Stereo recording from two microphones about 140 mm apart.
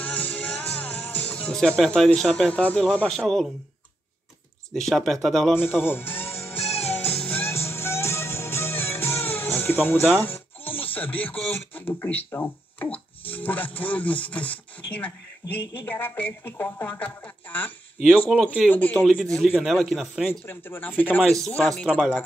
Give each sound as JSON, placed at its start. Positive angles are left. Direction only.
{"t": 0.0, "sound": "music", "side_deg": 10}
{"t": 4.7, "sound": "speech", "side_deg": 0}
{"t": 5.8, "sound": "speech", "side_deg": 15}
{"t": 6.7, "sound": "music", "side_deg": 45}
{"t": 7.2, "sound": "music", "side_deg": 15}
{"t": 10.2, "sound": "speech", "side_deg": 15}
{"t": 18.3, "sound": "speech", "side_deg": 0}
{"t": 18.7, "sound": "speech", "side_deg": 10}
{"t": 19.3, "sound": "speech", "side_deg": 0}
{"t": 20.4, "sound": "speech", "side_deg": 15}